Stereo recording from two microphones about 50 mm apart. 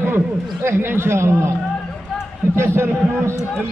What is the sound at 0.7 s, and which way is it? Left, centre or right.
Speech, right.